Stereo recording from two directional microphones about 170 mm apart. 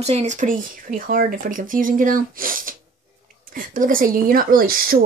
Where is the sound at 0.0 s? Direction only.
40° right (ahead or behind).